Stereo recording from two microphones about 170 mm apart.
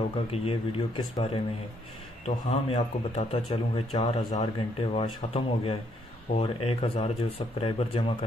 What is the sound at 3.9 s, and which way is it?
Speech, 40° left (ahead or behind).